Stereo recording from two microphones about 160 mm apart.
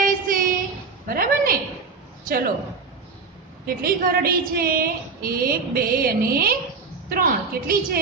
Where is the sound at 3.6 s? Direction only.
70° right (ahead or behind).